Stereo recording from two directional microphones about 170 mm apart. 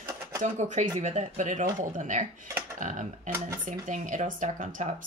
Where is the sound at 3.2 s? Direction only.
15° right (ahead or behind).